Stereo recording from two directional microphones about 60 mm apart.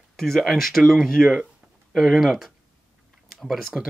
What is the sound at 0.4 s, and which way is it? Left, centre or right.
Speech, centre.